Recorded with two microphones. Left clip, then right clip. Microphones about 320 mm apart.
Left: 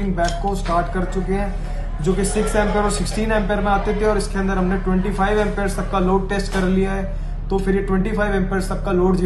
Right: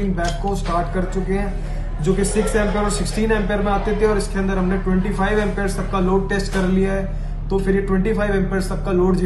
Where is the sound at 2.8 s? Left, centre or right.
Centre.